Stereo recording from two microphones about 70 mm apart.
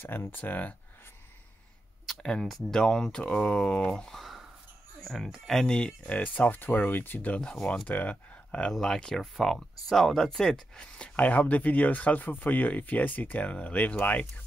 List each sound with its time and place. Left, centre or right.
0.0 s speech: left
2.0 s speech: centre
7.5 s speech: centre
7.9 s speech: left